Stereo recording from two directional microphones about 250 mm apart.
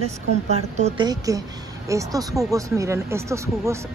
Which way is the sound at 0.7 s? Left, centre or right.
Right.